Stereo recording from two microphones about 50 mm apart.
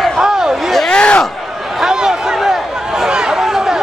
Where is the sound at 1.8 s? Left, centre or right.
Centre.